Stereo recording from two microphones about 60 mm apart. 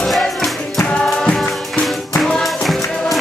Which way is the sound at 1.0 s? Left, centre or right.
Centre.